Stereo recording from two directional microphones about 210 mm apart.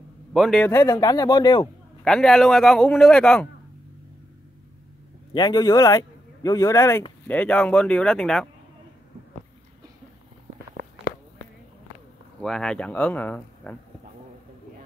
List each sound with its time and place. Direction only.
0.3 s a man's voice: centre (ahead or behind)
0.7 s a man's voice: 15° left (ahead or behind)
2.0 s a man's voice: 5° left (ahead or behind)
5.3 s a man's voice: 20° left (ahead or behind); by 8.5 s 5° left (ahead or behind)
12.4 s a man's voice: centre (ahead or behind)